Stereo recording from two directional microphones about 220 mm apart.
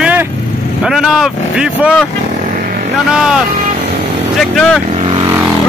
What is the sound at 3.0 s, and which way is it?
Speech, 5° right (ahead or behind).